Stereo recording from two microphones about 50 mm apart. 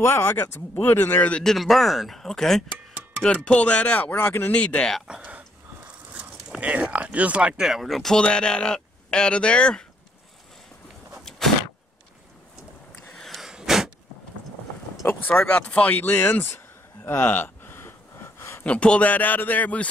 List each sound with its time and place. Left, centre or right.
0.0 s speech: left
1.4 s speech: centre
3.3 s speech: left
4.1 s speech: left
4.5 s speech: left
6.6 s speech: right
7.6 s speech: centre
7.9 s speech: centre
8.2 s speech: centre
11.2 s a sound: centre
13.5 s a sound: centre
15.0 s a man's voice: left
17.7 s a sound: left
18.6 s a man's voice: left